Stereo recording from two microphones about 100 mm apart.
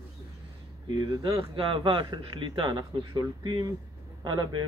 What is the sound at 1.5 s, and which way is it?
Speech, 60° right (ahead or behind).